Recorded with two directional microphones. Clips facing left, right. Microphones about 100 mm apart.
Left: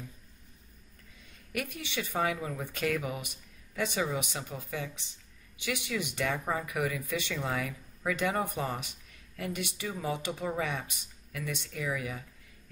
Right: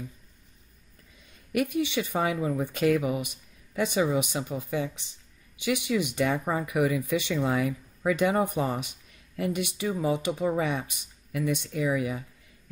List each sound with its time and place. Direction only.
1.5 s speech: 15° right (ahead or behind)